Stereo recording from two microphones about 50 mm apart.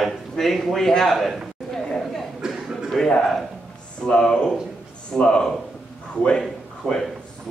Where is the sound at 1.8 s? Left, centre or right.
Centre.